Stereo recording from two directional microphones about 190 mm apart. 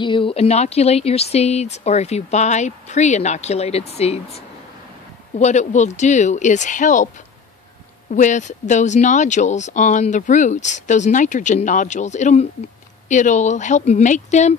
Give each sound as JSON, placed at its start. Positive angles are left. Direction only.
{"t": 0.0, "sound": "speech", "side_deg": 25}
{"t": 5.4, "sound": "speech", "side_deg": 35}
{"t": 8.1, "sound": "speech", "side_deg": 40}